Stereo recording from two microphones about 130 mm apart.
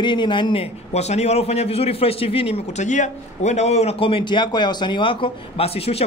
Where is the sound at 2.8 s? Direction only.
65° left (ahead or behind).